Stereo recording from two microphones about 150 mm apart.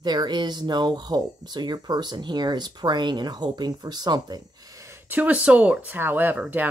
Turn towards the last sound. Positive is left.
turn(degrees=-10)  # may be behind; listen again after turning